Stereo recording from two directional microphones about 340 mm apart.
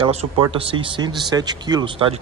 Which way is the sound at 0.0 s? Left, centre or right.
Centre.